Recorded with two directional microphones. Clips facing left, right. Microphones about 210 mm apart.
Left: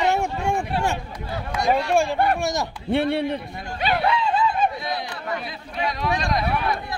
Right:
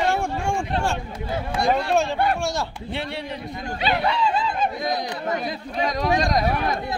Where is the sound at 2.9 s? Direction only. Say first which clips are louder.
Left 11 dB; 55° left (ahead or behind).